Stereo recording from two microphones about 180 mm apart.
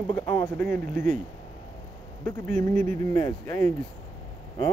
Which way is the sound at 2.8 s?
40° right (ahead or behind).